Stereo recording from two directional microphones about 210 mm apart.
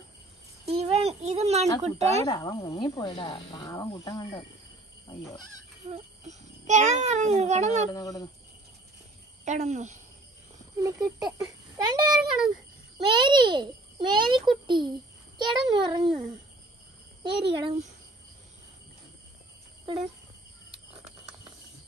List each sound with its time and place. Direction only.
0.7 s a sound: 30° right (ahead or behind)
1.8 s a child's voice: 30° right (ahead or behind)
2.2 s speech: 20° left (ahead or behind)
5.9 s a child's voice: 30° right (ahead or behind)
7.9 s speech: 15° left (ahead or behind)
9.4 s a child's voice: 35° right (ahead or behind)
10.8 s a sound: 15° right (ahead or behind)
11.3 s a child's voice: 15° right (ahead or behind)
17.2 s a child's voice: 25° right (ahead or behind)